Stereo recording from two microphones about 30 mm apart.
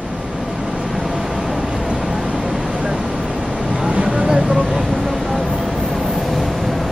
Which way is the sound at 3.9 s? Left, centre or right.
Right.